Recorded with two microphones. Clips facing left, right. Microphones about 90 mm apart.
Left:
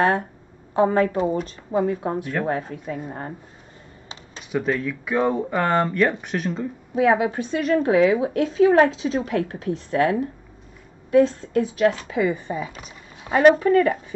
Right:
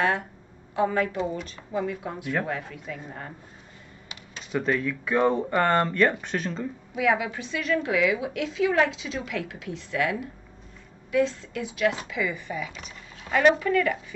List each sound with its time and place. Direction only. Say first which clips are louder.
0.7 s a woman's voice: left 6 dB; 40° left (ahead or behind)
4.5 s speech: left 2 dB; 5° left (ahead or behind)
7.0 s a woman's voice: left 6 dB; 35° left (ahead or behind)